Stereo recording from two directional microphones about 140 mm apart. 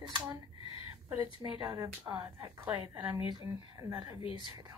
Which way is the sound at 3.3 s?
30° right (ahead or behind).